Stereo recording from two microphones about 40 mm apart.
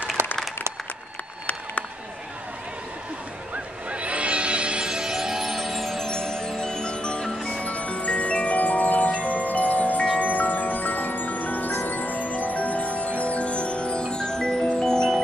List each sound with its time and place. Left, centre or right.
0.2 s applause: right
3.5 s music: right; by 6.0 s centre
6.0 s music: centre
7.4 s marimba: left
10.1 s glockenspiel: left
11.7 s music: left
14.1 s music: centre